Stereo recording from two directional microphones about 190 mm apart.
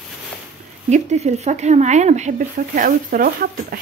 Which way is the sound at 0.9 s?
35° right (ahead or behind).